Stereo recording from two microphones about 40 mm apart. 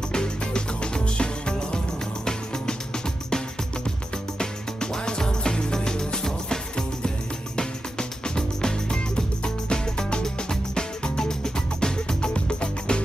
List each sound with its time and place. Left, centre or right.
0.1 s music: left
4.4 s music: centre